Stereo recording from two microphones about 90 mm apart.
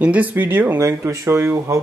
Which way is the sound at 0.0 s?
15° right (ahead or behind).